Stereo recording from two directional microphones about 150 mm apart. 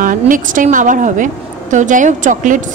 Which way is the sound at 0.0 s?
65° right (ahead or behind).